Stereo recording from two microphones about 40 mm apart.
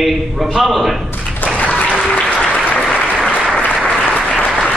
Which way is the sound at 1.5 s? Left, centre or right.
Left.